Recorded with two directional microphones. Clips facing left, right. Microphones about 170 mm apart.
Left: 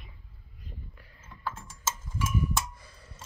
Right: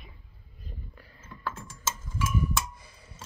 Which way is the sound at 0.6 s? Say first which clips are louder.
Right 2 dB; 35° right (ahead or behind).